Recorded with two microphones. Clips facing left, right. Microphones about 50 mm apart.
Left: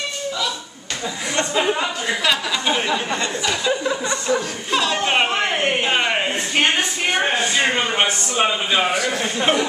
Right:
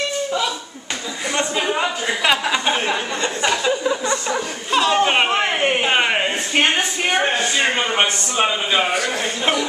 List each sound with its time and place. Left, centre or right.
1.7 s speech: centre
2.7 s speech: right
4.3 s speech: centre
5.0 s a sound: centre
7.2 s a man's voice: centre